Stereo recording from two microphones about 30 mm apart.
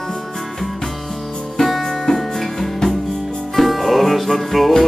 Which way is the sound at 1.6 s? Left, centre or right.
Centre.